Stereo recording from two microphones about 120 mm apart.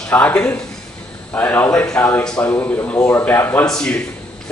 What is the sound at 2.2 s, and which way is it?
A man's voice, 10° left (ahead or behind).